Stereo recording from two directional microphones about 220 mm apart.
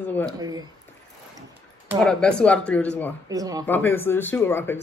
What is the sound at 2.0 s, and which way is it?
Speech, 5° left (ahead or behind).